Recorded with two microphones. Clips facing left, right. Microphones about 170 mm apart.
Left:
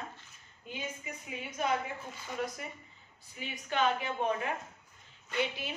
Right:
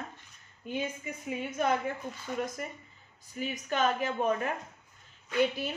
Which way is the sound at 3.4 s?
45° right (ahead or behind).